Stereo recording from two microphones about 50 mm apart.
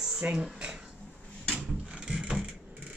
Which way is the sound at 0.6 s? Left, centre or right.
Centre.